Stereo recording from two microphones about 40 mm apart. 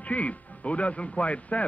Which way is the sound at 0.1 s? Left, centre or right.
Left.